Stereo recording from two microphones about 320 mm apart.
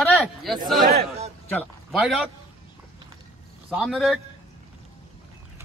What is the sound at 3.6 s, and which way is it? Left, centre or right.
Speech, centre.